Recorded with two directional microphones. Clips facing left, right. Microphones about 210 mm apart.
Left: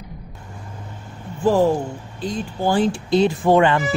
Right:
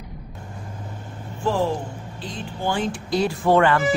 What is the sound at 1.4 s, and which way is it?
Speech, 45° left (ahead or behind).